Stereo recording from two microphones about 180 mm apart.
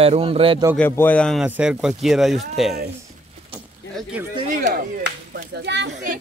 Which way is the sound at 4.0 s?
5° right (ahead or behind).